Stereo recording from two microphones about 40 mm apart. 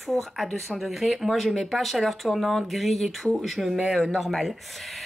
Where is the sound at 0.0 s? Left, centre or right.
Centre.